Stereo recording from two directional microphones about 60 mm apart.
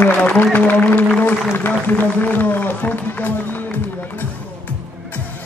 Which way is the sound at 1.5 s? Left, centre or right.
Left.